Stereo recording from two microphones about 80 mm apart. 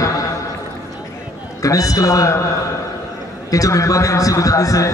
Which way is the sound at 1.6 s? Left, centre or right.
Left.